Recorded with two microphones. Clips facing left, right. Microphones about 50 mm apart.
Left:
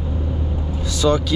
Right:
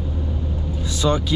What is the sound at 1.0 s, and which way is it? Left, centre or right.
Speech, right.